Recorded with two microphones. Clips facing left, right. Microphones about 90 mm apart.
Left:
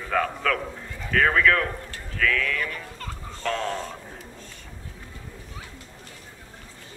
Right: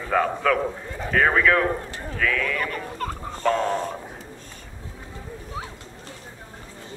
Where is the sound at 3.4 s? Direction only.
10° right (ahead or behind).